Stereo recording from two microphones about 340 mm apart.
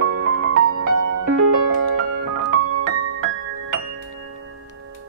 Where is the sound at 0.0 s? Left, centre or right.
Right.